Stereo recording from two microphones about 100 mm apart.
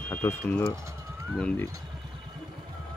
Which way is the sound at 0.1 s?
25° left (ahead or behind).